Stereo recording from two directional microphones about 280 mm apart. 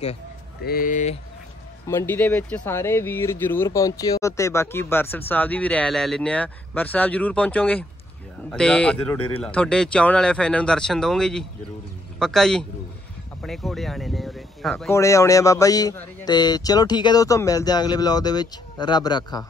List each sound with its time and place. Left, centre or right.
0.7 s speech: left
1.9 s speech: centre